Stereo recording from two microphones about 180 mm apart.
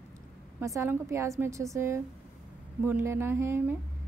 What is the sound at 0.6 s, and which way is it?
A woman's voice, 15° right (ahead or behind).